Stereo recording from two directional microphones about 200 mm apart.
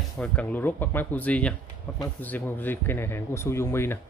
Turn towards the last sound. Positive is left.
turn(degrees=10)  # may be behind; listen again after turning